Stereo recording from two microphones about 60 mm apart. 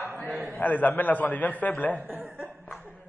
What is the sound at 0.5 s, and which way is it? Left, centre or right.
A man's voice, left.